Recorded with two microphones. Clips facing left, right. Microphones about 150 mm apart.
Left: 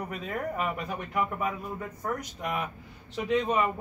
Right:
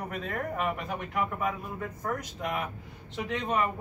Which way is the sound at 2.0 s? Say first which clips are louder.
Even; centre (ahead or behind).